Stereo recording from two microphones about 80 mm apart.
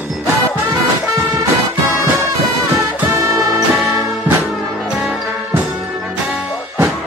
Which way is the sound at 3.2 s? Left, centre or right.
Right.